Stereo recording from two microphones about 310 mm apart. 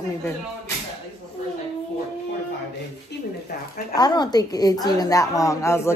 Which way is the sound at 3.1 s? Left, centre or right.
Left.